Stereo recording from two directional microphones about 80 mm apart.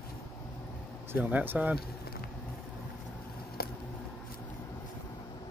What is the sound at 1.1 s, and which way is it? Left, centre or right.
Speech, right.